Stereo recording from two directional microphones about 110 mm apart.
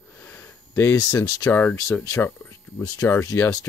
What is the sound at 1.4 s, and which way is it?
Speech, 15° left (ahead or behind).